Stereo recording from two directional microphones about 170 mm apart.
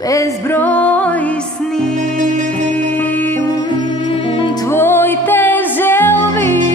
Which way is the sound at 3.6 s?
30° left (ahead or behind).